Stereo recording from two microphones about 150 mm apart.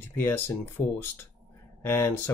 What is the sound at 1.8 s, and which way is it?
Speech, 15° left (ahead or behind).